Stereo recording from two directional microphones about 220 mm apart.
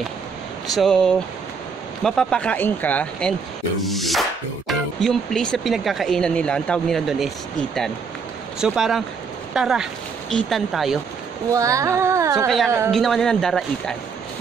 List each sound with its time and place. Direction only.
0.7 s speech: centre (ahead or behind)
11.5 s carnatic music: 15° right (ahead or behind)
12.4 s speech: centre (ahead or behind)